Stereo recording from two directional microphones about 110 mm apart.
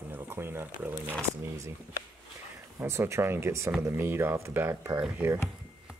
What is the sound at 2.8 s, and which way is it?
Speech, 25° right (ahead or behind).